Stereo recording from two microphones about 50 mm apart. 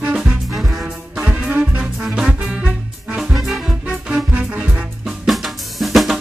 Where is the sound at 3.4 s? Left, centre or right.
Centre.